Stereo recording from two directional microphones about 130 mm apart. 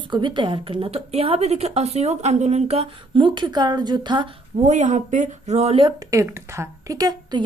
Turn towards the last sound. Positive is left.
turn(degrees=-30)  # may be behind; listen again after turning